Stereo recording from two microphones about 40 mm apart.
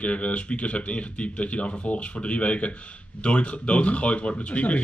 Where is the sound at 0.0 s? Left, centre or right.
Left.